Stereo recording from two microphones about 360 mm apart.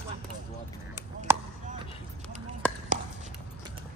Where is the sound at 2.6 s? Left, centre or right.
Centre.